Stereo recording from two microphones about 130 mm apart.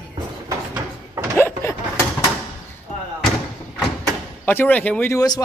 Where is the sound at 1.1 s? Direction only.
20° right (ahead or behind).